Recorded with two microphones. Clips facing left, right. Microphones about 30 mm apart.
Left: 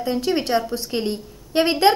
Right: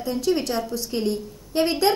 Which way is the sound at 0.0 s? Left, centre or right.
Left.